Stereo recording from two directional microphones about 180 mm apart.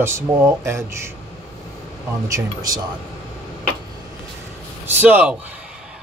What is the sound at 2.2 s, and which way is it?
Speech, 20° right (ahead or behind).